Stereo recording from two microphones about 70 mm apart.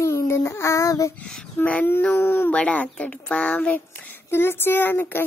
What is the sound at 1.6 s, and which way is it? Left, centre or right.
Speech, left.